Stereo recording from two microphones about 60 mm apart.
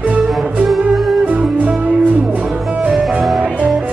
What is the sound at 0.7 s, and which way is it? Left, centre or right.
Music, centre.